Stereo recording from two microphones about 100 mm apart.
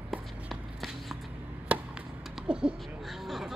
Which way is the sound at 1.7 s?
5° right (ahead or behind).